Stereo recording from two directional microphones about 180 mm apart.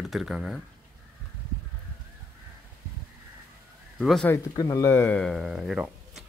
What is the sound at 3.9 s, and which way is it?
Speech, 5° left (ahead or behind).